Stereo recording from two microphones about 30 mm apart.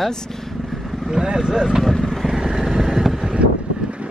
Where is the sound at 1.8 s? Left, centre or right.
Centre.